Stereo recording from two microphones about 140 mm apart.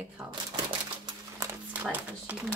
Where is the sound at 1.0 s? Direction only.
20° right (ahead or behind).